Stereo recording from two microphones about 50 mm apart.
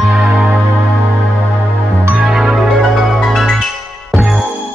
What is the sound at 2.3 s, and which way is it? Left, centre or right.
Music, centre.